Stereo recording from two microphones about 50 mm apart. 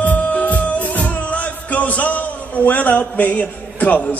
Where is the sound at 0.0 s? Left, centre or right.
Left.